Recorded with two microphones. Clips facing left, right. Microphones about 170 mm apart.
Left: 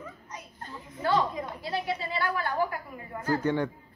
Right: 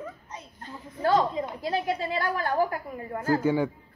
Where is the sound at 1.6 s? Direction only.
45° right (ahead or behind).